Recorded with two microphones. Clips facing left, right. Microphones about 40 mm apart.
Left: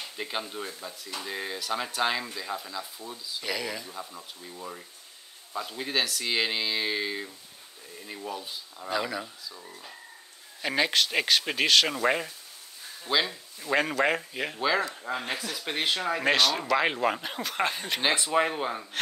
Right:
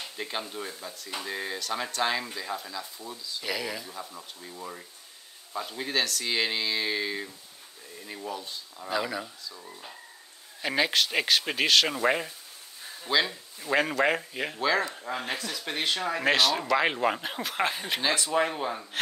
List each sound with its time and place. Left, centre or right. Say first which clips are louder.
0.2 s speech: left 1 dB; centre
9.7 s speech: even; centre
18.0 s speech: left 2 dB; left
18.3 s speech: left 1 dB; centre